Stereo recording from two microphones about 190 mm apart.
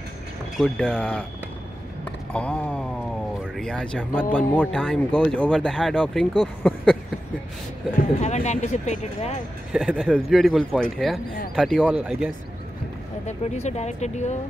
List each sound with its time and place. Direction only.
0.6 s speech: 5° left (ahead or behind)
2.3 s speech: 5° left (ahead or behind)
6.6 s a sound: 5° left (ahead or behind)
8.2 s speech: 35° left (ahead or behind)
9.7 s speech: 5° right (ahead or behind)
13.4 s speech: 35° left (ahead or behind)